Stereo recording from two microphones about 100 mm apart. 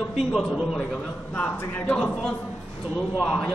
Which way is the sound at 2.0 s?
5° left (ahead or behind).